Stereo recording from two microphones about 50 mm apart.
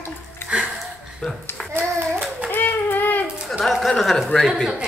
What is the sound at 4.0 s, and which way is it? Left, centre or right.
Speech, centre.